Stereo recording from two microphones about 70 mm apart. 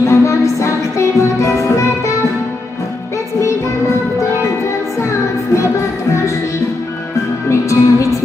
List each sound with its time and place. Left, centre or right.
0.0 s music: left
5.0 s music: left
7.4 s music: left